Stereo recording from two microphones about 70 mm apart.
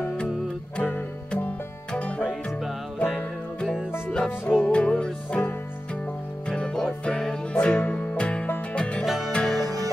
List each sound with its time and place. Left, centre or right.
0.7 s music: centre
4.1 s music: centre
6.5 s music: centre
9.0 s music: centre
9.3 s music: centre